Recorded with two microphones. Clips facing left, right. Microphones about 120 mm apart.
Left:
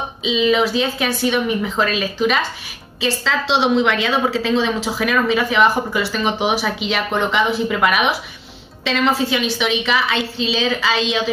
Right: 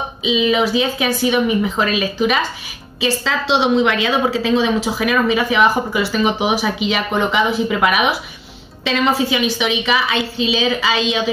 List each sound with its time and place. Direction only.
0.2 s a woman's voice: 5° right (ahead or behind)